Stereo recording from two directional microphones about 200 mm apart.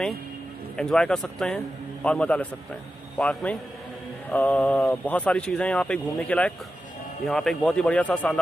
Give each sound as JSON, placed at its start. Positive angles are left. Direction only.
{"t": 0.7, "sound": "a man's voice", "side_deg": 5}